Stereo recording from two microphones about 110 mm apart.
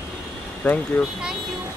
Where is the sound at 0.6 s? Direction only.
10° left (ahead or behind).